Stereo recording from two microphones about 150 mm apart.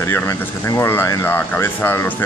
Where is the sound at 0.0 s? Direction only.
20° left (ahead or behind).